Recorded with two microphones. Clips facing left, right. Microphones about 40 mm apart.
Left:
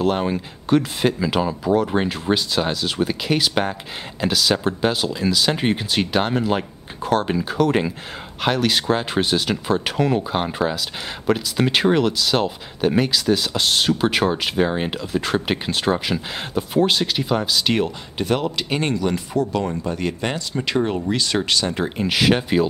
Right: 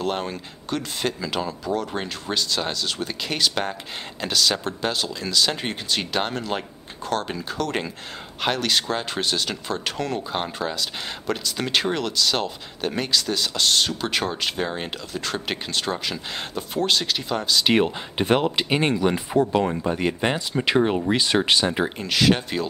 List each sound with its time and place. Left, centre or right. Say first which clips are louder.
0.0 s speech: left 6 dB; centre
17.6 s speech: right 1 dB; centre
22.0 s speech: left 3 dB; centre